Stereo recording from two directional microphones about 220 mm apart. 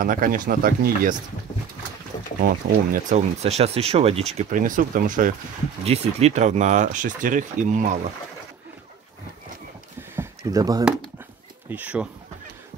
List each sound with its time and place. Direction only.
0.0 s speech: 40° right (ahead or behind)
2.4 s speech: 35° right (ahead or behind)
10.1 s a sound: 15° right (ahead or behind)
11.7 s speech: 5° right (ahead or behind)